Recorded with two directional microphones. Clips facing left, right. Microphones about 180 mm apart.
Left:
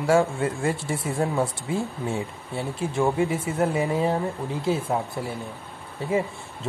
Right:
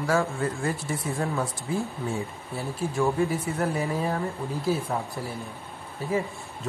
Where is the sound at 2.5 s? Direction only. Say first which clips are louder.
Left 2 dB; 20° left (ahead or behind).